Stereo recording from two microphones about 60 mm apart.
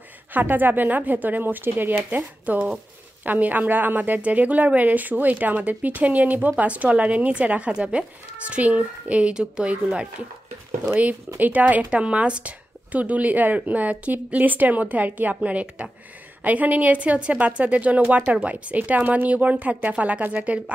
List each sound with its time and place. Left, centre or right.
0.3 s a woman's voice: right
11.3 s a woman's voice: right